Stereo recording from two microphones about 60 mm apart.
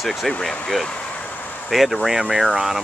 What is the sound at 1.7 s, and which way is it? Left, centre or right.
Speech, centre.